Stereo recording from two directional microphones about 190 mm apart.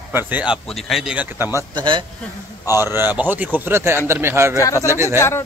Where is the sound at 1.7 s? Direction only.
25° right (ahead or behind).